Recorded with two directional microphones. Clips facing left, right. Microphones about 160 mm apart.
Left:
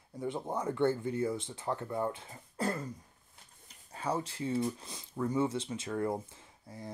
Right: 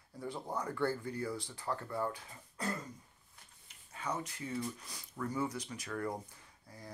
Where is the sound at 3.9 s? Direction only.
30° left (ahead or behind).